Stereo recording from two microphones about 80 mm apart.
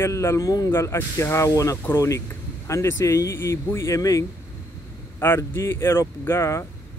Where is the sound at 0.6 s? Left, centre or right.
Left.